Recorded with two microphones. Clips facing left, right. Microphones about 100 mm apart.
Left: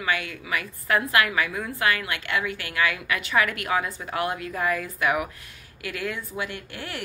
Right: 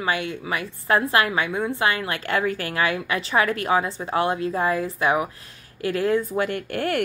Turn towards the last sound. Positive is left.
turn(degrees=-50)  # may be behind; listen again after turning